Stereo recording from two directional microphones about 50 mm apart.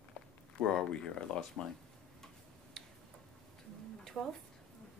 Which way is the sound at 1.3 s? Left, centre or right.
Centre.